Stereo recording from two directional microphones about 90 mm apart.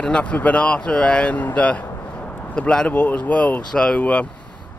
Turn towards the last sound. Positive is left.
turn(degrees=15)  # may be behind; listen again after turning